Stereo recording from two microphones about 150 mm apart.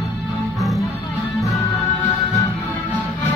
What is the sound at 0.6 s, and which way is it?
Music, centre (ahead or behind).